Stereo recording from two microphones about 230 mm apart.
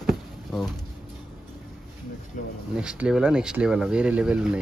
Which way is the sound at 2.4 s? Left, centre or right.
Left.